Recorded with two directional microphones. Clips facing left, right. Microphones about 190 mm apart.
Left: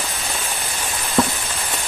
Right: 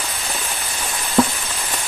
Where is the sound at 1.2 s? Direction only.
Centre (ahead or behind).